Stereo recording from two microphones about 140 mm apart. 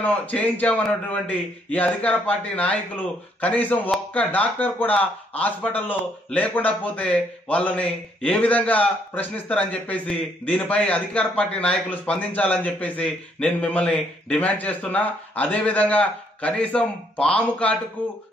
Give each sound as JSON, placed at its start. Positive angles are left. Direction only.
{"t": 0.0, "sound": "a man's voice", "side_deg": 10}